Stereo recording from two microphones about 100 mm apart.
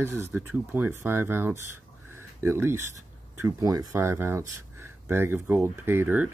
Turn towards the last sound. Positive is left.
turn(degrees=-20)  # may be behind; listen again after turning